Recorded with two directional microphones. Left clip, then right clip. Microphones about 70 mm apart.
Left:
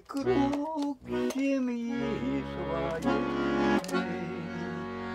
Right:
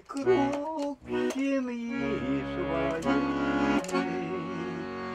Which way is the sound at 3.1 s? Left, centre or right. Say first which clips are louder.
Left 1 dB; right.